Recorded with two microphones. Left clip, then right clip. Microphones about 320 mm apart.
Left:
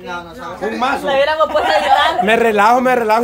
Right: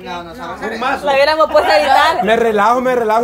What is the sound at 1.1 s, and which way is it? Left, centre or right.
A woman's voice, right.